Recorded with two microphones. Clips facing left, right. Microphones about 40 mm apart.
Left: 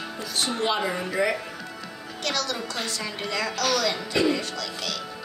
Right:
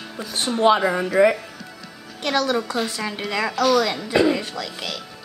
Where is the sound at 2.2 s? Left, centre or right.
Centre.